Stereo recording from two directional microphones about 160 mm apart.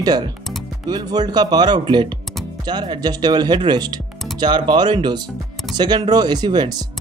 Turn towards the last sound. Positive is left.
turn(degrees=-25)  # may be behind; listen again after turning